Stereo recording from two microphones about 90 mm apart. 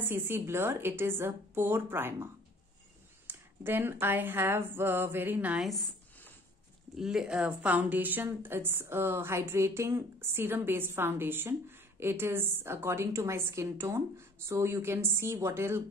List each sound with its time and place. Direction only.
0.0 s a woman's voice: 25° right (ahead or behind)
3.3 s a woman's voice: 25° right (ahead or behind)
5.6 s speech: centre (ahead or behind)
7.0 s a woman's voice: 5° right (ahead or behind); by 15.8 s 25° right (ahead or behind)